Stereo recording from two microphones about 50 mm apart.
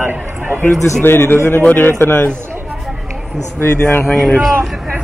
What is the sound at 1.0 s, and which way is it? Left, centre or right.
A man's voice, left.